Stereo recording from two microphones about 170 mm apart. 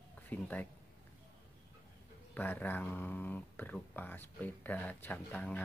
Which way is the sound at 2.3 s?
10° left (ahead or behind).